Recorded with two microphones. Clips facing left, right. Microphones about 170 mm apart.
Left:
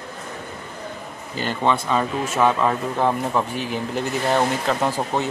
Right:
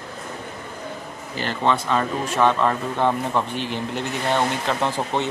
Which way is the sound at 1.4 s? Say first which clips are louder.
Left 1 dB; 10° left (ahead or behind).